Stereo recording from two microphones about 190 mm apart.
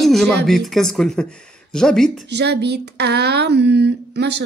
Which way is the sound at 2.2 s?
60° right (ahead or behind).